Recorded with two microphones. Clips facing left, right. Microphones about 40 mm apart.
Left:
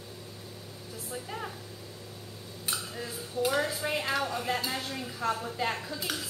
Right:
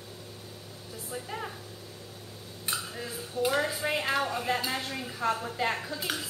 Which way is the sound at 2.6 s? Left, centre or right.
Centre.